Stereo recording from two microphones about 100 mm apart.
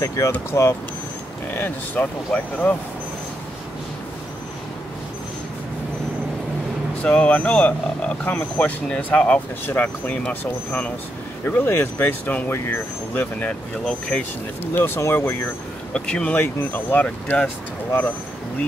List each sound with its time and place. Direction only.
0.3 s speech: 25° left (ahead or behind)
7.0 s speech: 15° left (ahead or behind)
15.0 s speech: 25° left (ahead or behind)
15.9 s speech: 10° left (ahead or behind)